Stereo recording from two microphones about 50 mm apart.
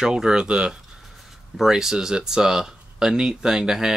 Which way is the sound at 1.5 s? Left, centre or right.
Centre.